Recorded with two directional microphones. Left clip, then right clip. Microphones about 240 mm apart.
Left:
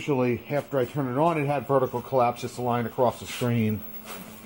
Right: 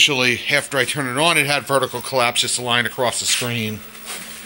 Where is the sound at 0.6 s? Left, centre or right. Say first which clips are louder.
Right 7 dB; centre.